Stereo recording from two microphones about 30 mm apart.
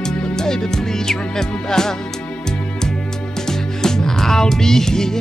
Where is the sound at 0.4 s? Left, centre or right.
Centre.